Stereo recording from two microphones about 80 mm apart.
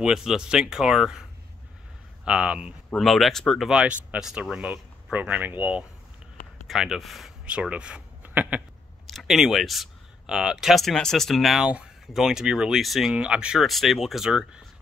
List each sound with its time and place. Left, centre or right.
0.0 s speech: centre
2.2 s speech: centre
3.0 s speech: centre
3.6 s speech: centre
6.7 s speech: centre
7.4 s speech: centre
9.0 s speech: centre
11.6 s speech: centre
13.1 s speech: centre
13.6 s speech: centre